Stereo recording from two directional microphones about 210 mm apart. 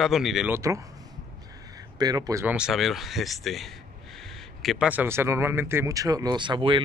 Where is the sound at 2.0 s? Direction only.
15° right (ahead or behind).